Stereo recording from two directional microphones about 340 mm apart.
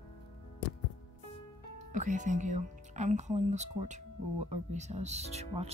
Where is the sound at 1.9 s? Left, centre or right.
Right.